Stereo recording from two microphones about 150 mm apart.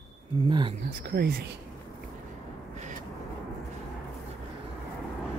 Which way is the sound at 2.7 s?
55° right (ahead or behind).